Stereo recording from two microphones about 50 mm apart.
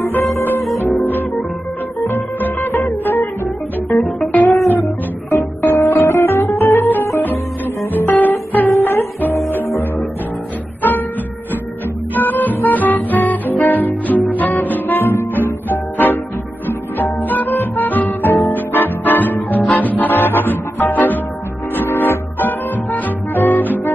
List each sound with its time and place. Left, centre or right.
2.0 s music: left
3.9 s music: centre
5.6 s music: left
6.0 s music: left
10.8 s music: left
12.2 s music: left